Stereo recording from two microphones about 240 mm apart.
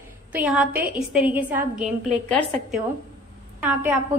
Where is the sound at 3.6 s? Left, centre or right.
Centre.